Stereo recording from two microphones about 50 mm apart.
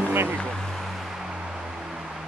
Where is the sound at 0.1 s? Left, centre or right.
Right.